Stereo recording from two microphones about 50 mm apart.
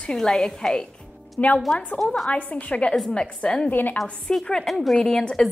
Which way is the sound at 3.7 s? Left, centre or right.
Left.